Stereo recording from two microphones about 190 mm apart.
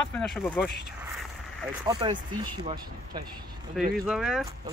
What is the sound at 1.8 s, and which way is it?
Speech, 25° right (ahead or behind).